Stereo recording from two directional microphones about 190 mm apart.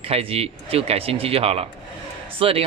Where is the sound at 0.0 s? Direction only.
30° right (ahead or behind).